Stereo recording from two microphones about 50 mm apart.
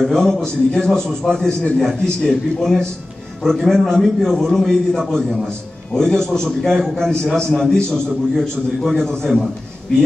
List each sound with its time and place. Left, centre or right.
0.0 s a man's voice: centre